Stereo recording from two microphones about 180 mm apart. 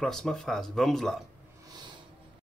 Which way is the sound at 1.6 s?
25° right (ahead or behind).